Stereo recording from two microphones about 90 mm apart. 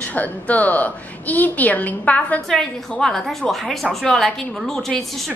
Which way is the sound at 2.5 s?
5° left (ahead or behind).